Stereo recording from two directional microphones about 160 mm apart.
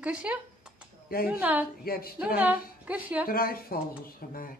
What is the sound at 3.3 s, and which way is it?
Speech, 65° left (ahead or behind).